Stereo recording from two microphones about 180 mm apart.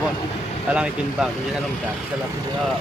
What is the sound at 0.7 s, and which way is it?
Speech, 5° right (ahead or behind).